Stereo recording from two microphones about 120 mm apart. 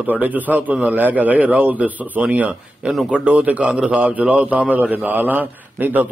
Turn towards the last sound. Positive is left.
turn(degrees=-15)  # may be behind; listen again after turning